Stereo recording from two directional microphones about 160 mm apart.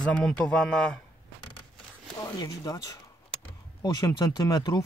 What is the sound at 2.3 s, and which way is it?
Speech, 20° left (ahead or behind).